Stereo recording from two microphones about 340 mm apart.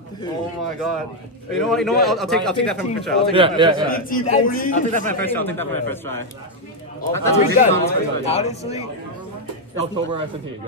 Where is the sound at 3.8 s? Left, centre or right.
Left.